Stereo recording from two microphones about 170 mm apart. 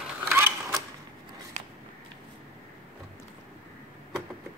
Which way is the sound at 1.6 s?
40° right (ahead or behind).